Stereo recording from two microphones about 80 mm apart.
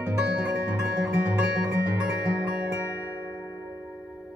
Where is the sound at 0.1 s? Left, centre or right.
Centre.